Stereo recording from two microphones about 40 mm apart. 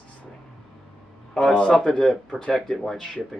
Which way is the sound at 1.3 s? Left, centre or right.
Left.